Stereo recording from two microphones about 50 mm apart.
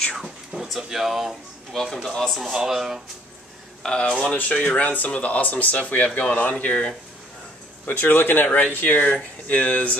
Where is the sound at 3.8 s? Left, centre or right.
Centre.